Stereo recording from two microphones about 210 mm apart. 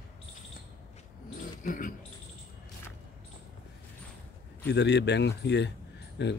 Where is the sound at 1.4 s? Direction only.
40° left (ahead or behind).